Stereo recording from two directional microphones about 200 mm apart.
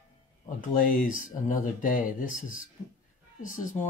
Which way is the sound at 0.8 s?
45° left (ahead or behind).